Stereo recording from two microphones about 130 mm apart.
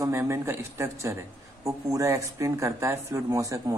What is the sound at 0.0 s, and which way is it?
Speech, 20° right (ahead or behind).